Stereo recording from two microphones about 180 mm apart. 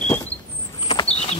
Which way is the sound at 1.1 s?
35° left (ahead or behind).